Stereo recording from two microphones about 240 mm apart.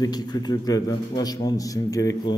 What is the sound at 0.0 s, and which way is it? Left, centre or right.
A man's voice, centre.